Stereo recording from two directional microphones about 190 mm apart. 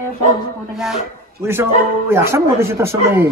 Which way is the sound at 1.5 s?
10° right (ahead or behind).